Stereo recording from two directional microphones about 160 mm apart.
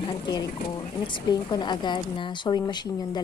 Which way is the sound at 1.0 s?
30° left (ahead or behind).